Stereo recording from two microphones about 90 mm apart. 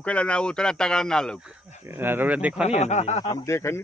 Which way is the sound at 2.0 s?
25° right (ahead or behind).